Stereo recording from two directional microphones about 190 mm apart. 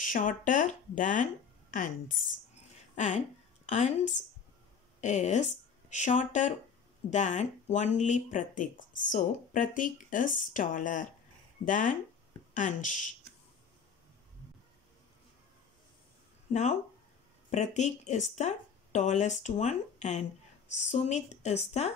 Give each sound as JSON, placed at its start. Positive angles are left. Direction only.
{"t": 0.0, "sound": "speech", "side_deg": 45}
{"t": 16.5, "sound": "speech", "side_deg": 40}